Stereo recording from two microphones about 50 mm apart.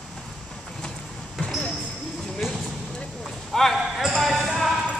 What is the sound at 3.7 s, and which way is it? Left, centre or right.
Basketball bounce, centre.